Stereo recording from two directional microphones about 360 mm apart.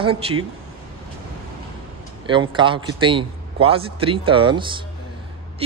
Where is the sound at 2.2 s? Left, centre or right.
Centre.